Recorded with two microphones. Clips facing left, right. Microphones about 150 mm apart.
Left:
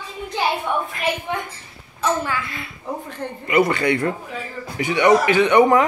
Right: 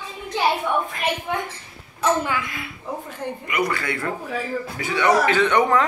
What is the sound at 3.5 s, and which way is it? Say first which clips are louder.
A man's voice: left 8 dB; 25° left (ahead or behind).